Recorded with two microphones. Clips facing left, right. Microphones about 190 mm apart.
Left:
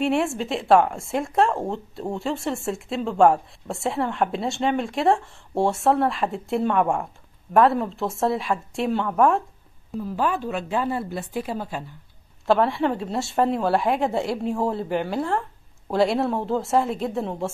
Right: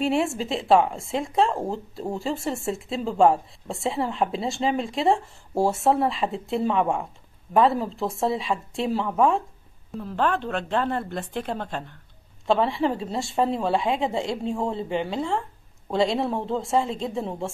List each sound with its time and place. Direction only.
0.0 s a woman's voice: centre (ahead or behind)